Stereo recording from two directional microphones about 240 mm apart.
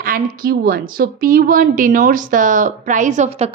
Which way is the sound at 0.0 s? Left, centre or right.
Right.